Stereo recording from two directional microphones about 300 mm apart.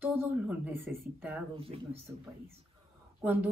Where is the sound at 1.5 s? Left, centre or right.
Centre.